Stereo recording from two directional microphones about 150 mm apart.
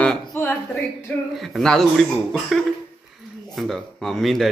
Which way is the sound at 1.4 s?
Centre (ahead or behind).